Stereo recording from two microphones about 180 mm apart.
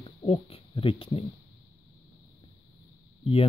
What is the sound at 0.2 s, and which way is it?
Speech, 30° left (ahead or behind).